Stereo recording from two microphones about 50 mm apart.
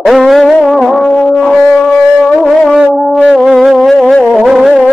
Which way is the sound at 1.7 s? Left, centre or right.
Centre.